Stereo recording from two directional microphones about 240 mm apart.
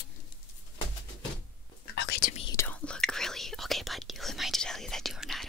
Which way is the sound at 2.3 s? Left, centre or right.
Centre.